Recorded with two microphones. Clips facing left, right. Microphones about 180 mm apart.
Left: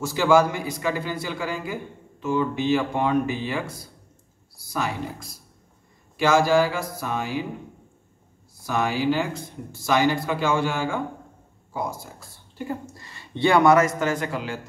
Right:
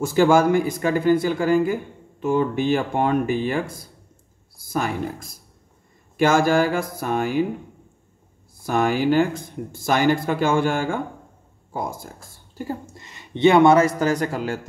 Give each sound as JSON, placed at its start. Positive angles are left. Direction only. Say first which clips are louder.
{"t": 0.0, "sound": "a man's voice", "louder": "right 3 dB", "side_deg": -50}
{"t": 8.6, "sound": "a man's voice", "louder": "right 4 dB", "side_deg": -50}
{"t": 12.9, "sound": "a man's voice", "louder": "right 2 dB", "side_deg": -20}